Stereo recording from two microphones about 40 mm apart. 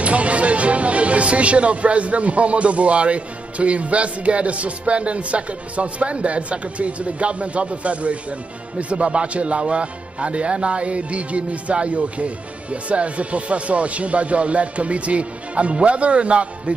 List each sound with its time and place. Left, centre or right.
0.0 s speech: right